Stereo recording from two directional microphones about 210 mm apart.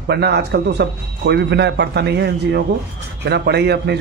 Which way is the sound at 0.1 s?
50° right (ahead or behind).